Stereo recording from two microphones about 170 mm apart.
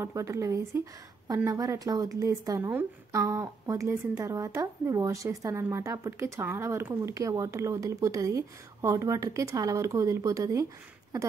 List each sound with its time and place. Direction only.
0.0 s a woman's voice: 15° right (ahead or behind)